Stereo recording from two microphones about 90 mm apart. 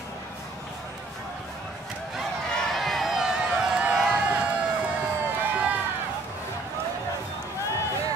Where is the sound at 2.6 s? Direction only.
Centre (ahead or behind).